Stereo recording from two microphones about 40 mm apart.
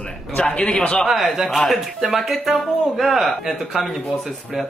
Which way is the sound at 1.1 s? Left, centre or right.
Centre.